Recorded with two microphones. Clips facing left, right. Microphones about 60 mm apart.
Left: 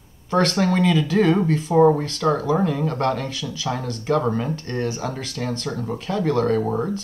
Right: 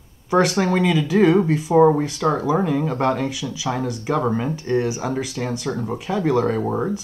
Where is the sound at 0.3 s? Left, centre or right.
Centre.